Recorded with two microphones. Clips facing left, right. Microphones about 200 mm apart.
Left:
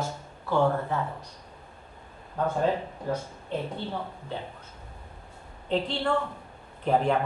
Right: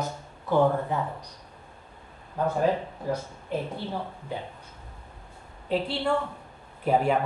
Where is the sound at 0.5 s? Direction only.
15° right (ahead or behind).